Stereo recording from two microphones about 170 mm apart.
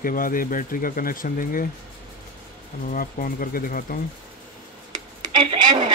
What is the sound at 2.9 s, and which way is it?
Speech, 55° left (ahead or behind).